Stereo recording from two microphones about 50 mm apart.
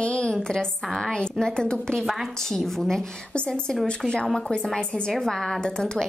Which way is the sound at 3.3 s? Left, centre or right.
Centre.